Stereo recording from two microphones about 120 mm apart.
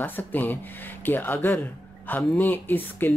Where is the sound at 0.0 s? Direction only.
15° left (ahead or behind).